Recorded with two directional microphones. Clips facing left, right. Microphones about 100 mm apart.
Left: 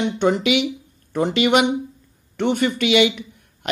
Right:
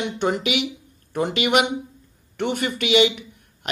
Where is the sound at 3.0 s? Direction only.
40° left (ahead or behind).